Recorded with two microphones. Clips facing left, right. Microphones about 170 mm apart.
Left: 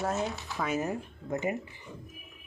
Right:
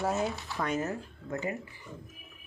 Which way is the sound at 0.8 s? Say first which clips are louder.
Left 1 dB; 15° left (ahead or behind).